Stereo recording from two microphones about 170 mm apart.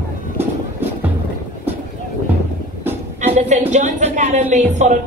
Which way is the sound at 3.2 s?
45° right (ahead or behind).